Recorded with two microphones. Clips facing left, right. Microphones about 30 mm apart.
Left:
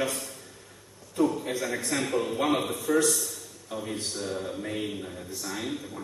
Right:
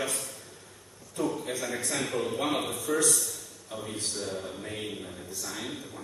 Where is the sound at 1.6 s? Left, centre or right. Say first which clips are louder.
Left 3 dB; centre.